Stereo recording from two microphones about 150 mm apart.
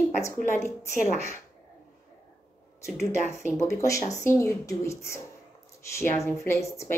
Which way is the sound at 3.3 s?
20° left (ahead or behind).